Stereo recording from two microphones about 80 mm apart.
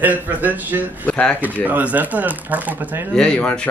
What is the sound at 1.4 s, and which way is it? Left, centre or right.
A man's voice, right.